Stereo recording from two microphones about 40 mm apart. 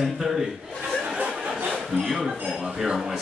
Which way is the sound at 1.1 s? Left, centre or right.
Right.